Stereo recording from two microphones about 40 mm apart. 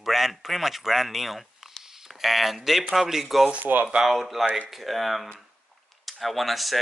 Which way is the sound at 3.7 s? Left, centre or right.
Right.